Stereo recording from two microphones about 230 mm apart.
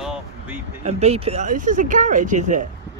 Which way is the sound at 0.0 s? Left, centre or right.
Centre.